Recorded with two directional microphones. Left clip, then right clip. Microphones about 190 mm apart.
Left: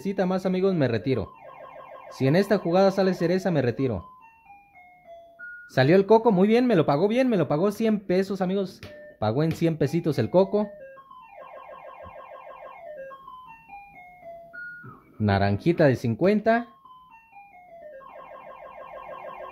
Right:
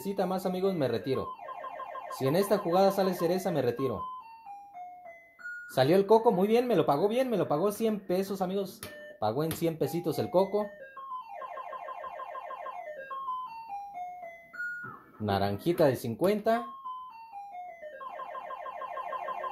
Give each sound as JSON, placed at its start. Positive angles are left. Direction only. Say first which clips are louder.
{"t": 0.0, "sound": "speech", "louder": "left 5 dB", "side_deg": 40}
{"t": 5.8, "sound": "speech", "louder": "left 5 dB", "side_deg": 35}
{"t": 15.2, "sound": "speech", "louder": "left 5 dB", "side_deg": 35}